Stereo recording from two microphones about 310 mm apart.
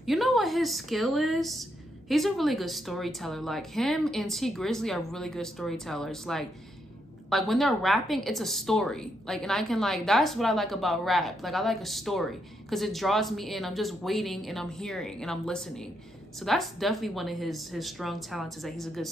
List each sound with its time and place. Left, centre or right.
0.0 s a woman's voice: centre